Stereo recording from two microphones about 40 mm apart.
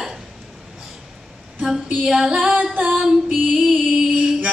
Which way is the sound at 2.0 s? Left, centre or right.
Centre.